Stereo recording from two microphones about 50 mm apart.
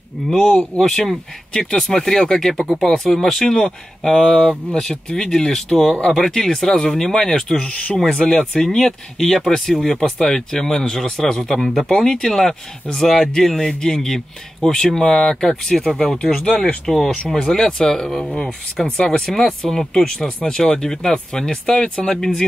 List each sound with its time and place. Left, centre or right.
0.4 s speech: centre
0.9 s speech: centre
16.2 s speech: centre